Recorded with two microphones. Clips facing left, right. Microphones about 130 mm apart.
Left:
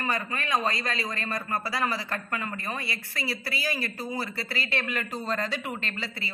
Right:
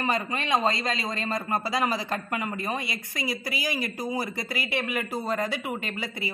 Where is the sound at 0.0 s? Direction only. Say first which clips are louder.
Right 3 dB; 20° right (ahead or behind).